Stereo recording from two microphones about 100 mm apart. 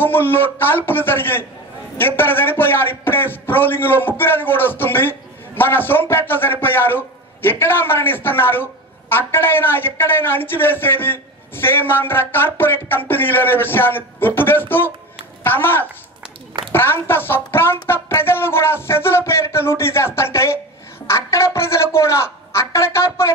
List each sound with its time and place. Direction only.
0.0 s a man's voice: 20° left (ahead or behind)